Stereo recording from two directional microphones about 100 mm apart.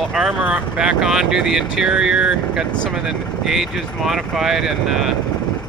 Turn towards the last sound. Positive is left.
turn(degrees=-5)  # may be behind; listen again after turning